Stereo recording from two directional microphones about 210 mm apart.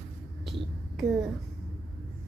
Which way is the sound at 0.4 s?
Centre (ahead or behind).